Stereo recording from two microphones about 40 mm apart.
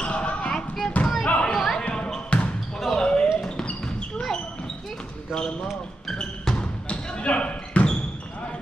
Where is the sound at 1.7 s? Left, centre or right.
Left.